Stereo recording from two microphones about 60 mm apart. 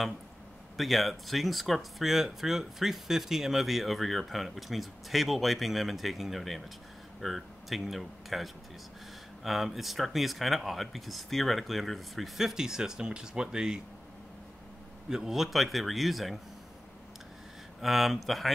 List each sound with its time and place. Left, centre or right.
0.7 s speech: centre
15.0 s speech: centre
17.8 s speech: centre